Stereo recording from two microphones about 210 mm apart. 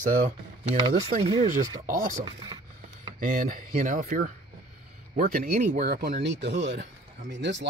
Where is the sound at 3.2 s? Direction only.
40° right (ahead or behind); by 7.6 s 60° right (ahead or behind).